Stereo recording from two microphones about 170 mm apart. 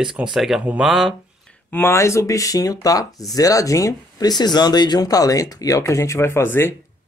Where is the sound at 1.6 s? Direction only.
15° left (ahead or behind).